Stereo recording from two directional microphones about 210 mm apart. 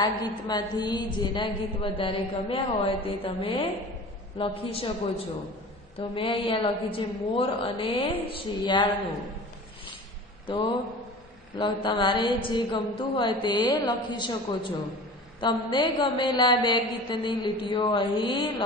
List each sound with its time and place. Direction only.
0.0 s a woman's voice: 20° left (ahead or behind)
5.9 s a woman's voice: 25° left (ahead or behind)
10.4 s a man's voice: 25° left (ahead or behind)